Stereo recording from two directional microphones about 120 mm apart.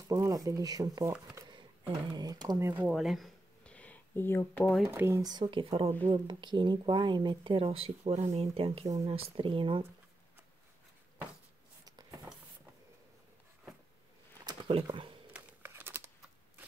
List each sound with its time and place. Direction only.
0.1 s speech: 30° right (ahead or behind)
2.1 s speech: 35° right (ahead or behind)
2.9 s speech: centre (ahead or behind)
3.6 s a sound: 10° left (ahead or behind)
4.8 s speech: 20° right (ahead or behind)
5.2 s speech: 35° right (ahead or behind)
14.4 s a sound: 45° right (ahead or behind)
15.3 s typing: 20° right (ahead or behind)